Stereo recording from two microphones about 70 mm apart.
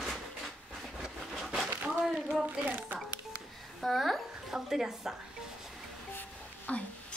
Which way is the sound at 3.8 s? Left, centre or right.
Centre.